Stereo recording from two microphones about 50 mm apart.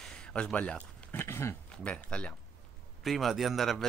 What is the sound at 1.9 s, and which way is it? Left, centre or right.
Speech, left.